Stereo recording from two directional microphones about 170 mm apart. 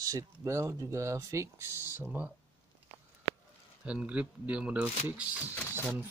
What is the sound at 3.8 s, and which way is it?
Speech, 5° right (ahead or behind).